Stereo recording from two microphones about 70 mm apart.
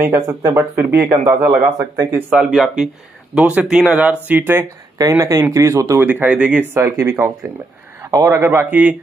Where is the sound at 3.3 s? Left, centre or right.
Centre.